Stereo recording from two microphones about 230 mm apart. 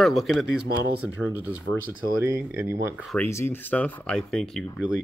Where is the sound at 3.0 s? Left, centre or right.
Centre.